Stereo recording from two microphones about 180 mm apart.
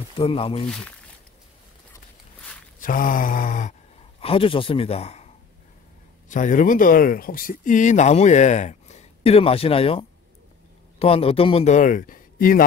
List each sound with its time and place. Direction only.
0.3 s speech: 30° left (ahead or behind)
0.7 s speech: 5° left (ahead or behind)
2.8 s mantra: 50° left (ahead or behind)
4.2 s a man's voice: 30° left (ahead or behind); by 12.6 s 50° left (ahead or behind)